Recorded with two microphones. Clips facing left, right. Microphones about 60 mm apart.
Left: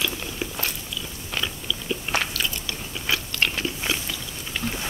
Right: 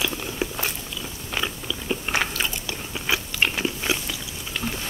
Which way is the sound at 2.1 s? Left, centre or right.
Right.